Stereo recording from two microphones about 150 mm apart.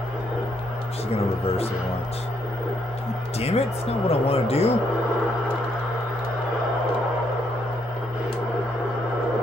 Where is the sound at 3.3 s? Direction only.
45° left (ahead or behind).